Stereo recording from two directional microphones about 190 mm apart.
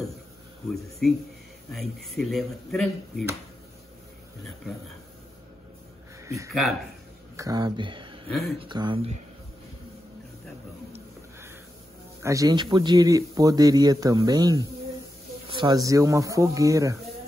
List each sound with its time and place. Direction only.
0.7 s speech: centre (ahead or behind)
6.2 s speech: 15° right (ahead or behind)
12.2 s speech: 15° right (ahead or behind)